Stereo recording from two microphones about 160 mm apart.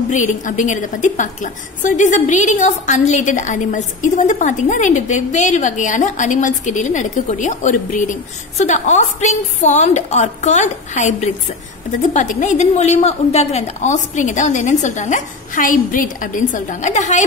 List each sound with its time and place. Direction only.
0.1 s a woman's voice: 50° left (ahead or behind)